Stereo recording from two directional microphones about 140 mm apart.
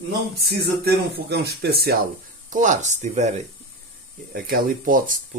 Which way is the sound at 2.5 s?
65° right (ahead or behind).